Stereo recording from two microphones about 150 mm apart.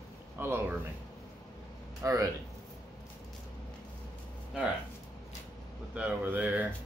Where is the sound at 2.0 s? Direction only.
20° right (ahead or behind).